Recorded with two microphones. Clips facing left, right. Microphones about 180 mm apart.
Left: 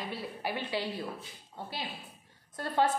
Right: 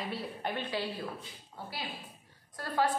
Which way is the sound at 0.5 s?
15° left (ahead or behind).